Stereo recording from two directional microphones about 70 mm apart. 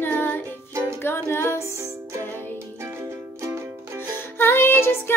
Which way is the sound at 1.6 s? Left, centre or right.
Right.